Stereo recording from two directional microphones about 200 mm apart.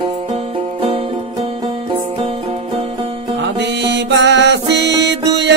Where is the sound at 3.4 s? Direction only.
60° right (ahead or behind).